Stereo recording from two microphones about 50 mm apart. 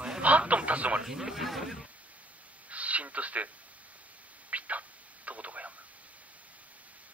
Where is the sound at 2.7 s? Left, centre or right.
Right.